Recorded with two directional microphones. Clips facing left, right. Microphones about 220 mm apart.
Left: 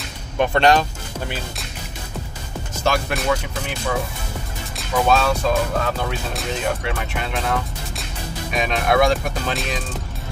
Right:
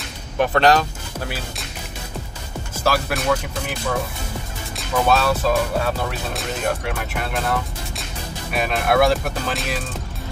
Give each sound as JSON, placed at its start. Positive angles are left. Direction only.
{"t": 0.5, "sound": "speech", "side_deg": 0}
{"t": 2.7, "sound": "speech", "side_deg": -5}
{"t": 4.7, "sound": "speech", "side_deg": -5}